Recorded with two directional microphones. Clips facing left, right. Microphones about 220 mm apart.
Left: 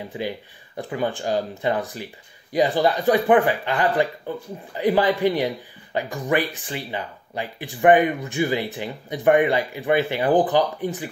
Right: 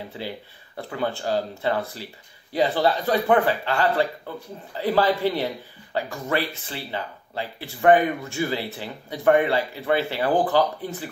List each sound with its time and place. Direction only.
0.1 s speech: 15° left (ahead or behind)